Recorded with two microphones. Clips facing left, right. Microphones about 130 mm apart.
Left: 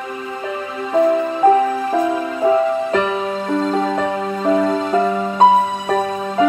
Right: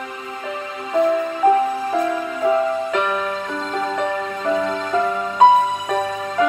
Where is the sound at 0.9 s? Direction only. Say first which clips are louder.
Left 3 dB; 35° left (ahead or behind).